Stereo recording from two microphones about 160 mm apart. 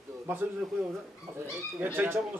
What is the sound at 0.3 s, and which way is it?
Speech, 10° right (ahead or behind).